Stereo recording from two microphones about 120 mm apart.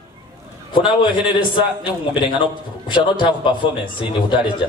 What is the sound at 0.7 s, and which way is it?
A man's voice, 40° left (ahead or behind).